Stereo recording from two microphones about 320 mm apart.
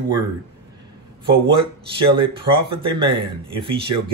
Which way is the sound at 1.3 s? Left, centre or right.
Centre.